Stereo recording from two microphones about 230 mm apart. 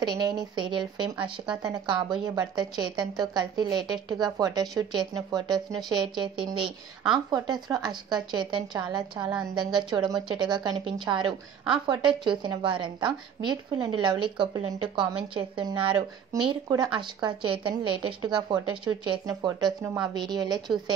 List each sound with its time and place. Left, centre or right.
0.0 s a woman's voice: centre